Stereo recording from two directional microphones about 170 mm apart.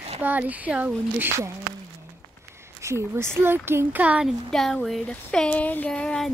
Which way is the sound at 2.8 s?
15° right (ahead or behind).